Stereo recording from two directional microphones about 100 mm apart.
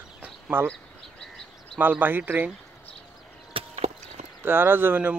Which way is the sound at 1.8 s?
20° right (ahead or behind).